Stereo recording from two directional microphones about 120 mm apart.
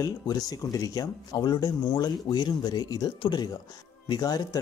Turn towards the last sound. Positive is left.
turn(degrees=35)  # may be behind; listen again after turning